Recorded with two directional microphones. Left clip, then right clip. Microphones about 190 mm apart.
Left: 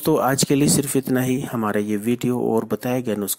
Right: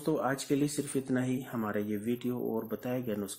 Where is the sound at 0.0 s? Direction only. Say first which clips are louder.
Left 13 dB; 40° left (ahead or behind).